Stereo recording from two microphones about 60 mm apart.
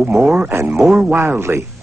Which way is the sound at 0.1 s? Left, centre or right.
Centre.